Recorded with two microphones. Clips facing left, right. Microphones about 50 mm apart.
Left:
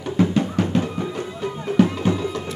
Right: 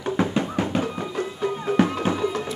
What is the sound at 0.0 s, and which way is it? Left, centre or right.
Music, right.